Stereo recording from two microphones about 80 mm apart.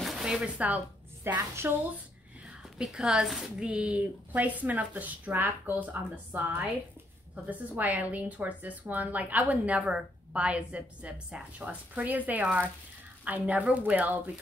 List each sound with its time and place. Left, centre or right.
0.0 s a sound: centre
1.2 s a woman's voice: right
2.8 s speech: centre
3.6 s a woman's voice: centre